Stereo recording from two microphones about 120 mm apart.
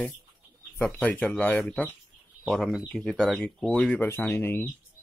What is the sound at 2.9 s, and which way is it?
Speech, 5° left (ahead or behind).